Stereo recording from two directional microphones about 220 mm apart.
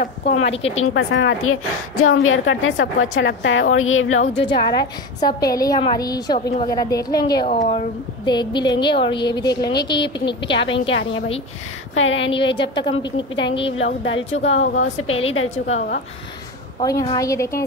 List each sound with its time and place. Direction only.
0.0 s a woman's voice: 30° left (ahead or behind)
0.7 s a woman's voice: 65° left (ahead or behind)
4.2 s a woman's voice: 25° left (ahead or behind)
7.4 s a woman's voice: 35° left (ahead or behind)
8.3 s a woman's voice: 20° left (ahead or behind)
11.9 s a woman's voice: 60° left (ahead or behind)
12.3 s a woman's voice: 20° left (ahead or behind)
14.0 s a woman's voice: 60° left (ahead or behind)
15.5 s a woman's voice: 30° left (ahead or behind)
16.8 s a woman's voice: 20° left (ahead or behind)